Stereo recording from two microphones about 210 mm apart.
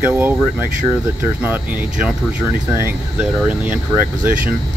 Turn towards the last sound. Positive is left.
turn(degrees=-10)  # may be behind; listen again after turning